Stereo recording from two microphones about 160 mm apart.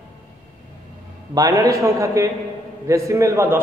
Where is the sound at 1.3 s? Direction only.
20° right (ahead or behind).